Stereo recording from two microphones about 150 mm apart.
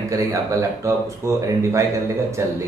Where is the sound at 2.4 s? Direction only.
20° right (ahead or behind).